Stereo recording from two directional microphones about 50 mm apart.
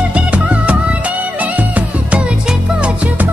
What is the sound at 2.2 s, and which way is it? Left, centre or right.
Music, centre.